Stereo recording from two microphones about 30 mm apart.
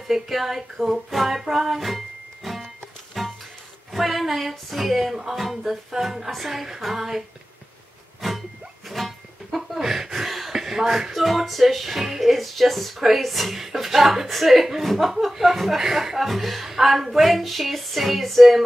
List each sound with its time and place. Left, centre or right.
0.1 s music: centre
3.9 s speech: centre
6.4 s a sound: centre
8.2 s music: centre
11.2 s speech: centre